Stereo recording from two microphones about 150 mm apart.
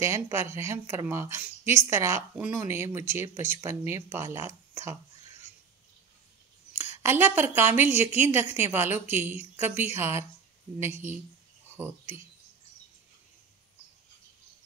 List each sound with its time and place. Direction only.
0.0 s a woman's voice: 20° right (ahead or behind)
6.8 s a woman's voice: 15° right (ahead or behind)